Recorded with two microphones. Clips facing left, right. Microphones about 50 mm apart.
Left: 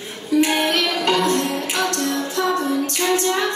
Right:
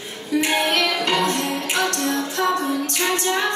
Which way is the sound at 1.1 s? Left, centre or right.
Right.